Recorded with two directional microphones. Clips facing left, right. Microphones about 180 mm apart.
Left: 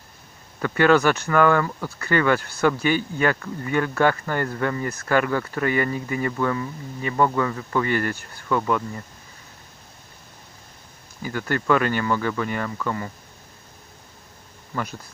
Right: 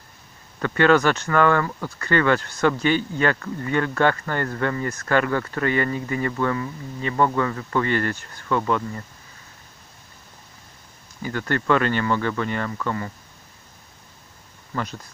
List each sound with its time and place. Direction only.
0.6 s speech: 10° left (ahead or behind)
11.2 s speech: 10° left (ahead or behind)